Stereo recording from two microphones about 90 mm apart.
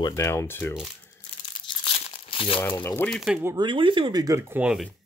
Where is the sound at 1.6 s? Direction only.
85° left.